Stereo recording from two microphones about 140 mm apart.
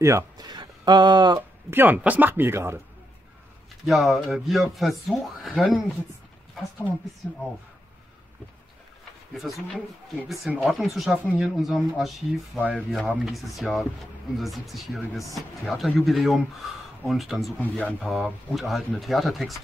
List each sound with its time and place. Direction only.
0.0 s speech: 25° right (ahead or behind)
1.7 s speech: 15° right (ahead or behind)
3.8 s speech: centre (ahead or behind)
7.2 s speech: 10° left (ahead or behind)
9.4 s speech: centre (ahead or behind)
17.6 s speech: 10° left (ahead or behind)
18.0 s speech: centre (ahead or behind)